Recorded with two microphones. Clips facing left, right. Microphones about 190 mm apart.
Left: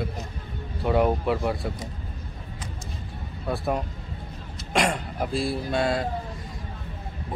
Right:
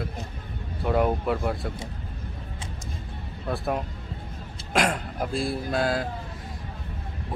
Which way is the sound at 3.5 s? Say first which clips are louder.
Left 1 dB; centre (ahead or behind).